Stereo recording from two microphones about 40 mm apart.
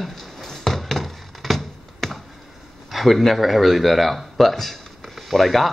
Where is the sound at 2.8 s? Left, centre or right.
Centre.